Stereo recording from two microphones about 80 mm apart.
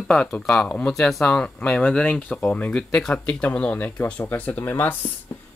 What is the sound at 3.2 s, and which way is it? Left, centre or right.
Speech, centre.